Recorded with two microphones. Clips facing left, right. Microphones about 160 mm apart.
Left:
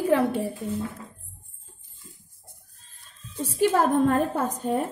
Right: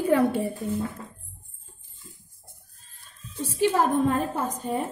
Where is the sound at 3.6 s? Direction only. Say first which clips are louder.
Left 1 dB; 55° left (ahead or behind).